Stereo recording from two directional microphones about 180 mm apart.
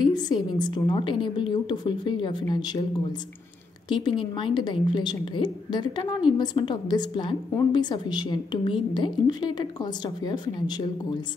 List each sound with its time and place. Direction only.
0.0 s a woman's voice: 25° left (ahead or behind)
3.9 s a woman's voice: 25° left (ahead or behind)